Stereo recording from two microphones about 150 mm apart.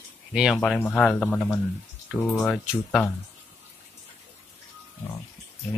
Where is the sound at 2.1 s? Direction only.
20° left (ahead or behind).